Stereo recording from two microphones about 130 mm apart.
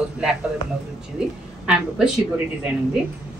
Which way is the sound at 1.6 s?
5° right (ahead or behind).